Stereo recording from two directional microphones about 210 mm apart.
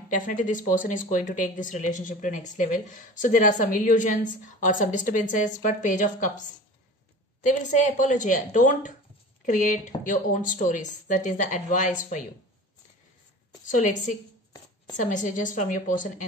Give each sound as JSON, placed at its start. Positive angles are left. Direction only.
{"t": 0.1, "sound": "speech", "side_deg": 40}
{"t": 7.4, "sound": "speech", "side_deg": 35}
{"t": 13.7, "sound": "speech", "side_deg": 35}